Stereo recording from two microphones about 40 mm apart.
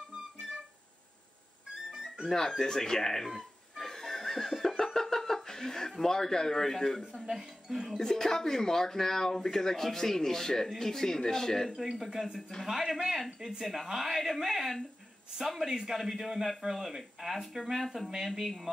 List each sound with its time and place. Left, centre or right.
1.7 s music: centre
2.2 s speech: centre
3.8 s snicker: centre
7.2 s speech: centre
8.0 s speech: centre
11.7 s speech: centre